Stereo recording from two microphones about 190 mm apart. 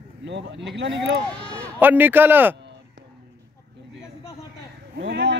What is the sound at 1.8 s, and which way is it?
Speech, 10° right (ahead or behind).